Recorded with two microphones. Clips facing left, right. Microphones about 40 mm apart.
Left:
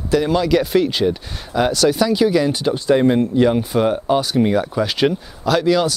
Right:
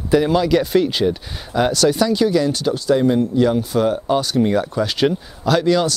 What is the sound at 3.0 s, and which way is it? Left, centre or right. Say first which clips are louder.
Speech: left 2 dB; left.